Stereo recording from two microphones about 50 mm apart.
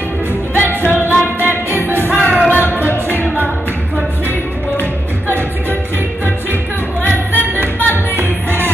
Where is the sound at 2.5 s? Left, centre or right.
Left.